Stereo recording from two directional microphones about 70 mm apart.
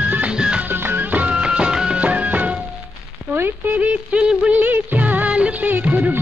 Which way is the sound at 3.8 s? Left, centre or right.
Centre.